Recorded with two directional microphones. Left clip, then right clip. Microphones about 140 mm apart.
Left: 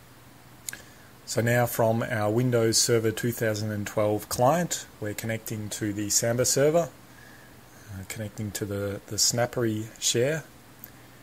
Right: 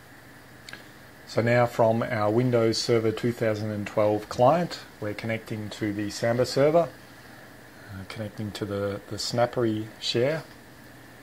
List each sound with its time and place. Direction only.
1.3 s speech: 40° left (ahead or behind)
8.7 s speech: 40° left (ahead or behind)